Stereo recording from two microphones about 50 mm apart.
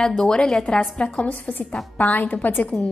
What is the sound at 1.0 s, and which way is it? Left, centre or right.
A woman's voice, left.